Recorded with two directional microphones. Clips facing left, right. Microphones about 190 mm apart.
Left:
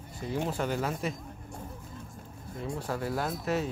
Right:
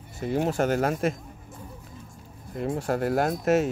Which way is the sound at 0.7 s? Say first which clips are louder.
Right 7 dB; 55° right (ahead or behind).